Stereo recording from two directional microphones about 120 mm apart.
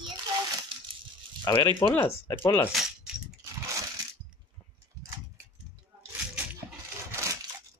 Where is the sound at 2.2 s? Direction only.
20° left (ahead or behind).